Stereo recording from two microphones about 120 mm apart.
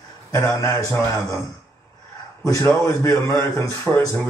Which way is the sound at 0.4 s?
25° left (ahead or behind).